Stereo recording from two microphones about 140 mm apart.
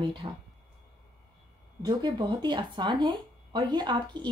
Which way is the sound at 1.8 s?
30° right (ahead or behind).